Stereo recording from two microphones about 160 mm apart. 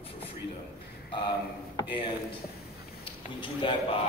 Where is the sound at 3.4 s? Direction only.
30° left (ahead or behind).